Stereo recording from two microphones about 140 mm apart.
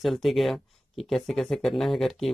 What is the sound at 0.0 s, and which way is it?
Speech, centre (ahead or behind).